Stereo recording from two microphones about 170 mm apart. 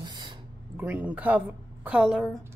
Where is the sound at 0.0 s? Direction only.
25° right (ahead or behind).